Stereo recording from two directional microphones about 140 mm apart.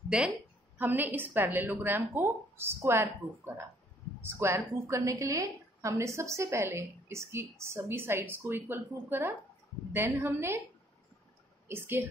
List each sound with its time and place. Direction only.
0.1 s a woman's voice: 5° right (ahead or behind)
11.6 s speech: 15° right (ahead or behind)